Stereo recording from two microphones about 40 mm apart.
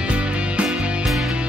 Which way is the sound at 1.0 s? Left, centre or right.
Centre.